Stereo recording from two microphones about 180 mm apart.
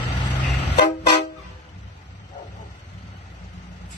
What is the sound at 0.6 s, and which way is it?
Vehicle, 70° left (ahead or behind).